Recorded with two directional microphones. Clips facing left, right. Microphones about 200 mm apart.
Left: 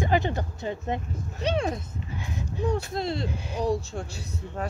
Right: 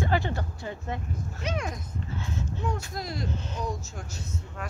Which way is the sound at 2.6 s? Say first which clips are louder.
Left 10 dB; 35° left (ahead or behind).